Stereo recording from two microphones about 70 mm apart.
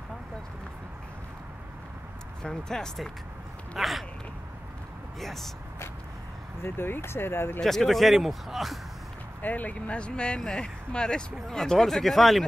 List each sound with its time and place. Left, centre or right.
2.4 s speech: centre
5.2 s speech: centre
6.6 s speech: left
7.6 s speech: centre
9.4 s speech: left; by 12.4 s centre